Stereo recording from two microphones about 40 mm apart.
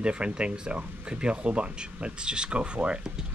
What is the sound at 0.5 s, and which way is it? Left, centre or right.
Speech, right.